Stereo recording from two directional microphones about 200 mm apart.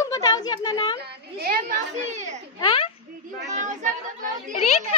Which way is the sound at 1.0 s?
55° right (ahead or behind).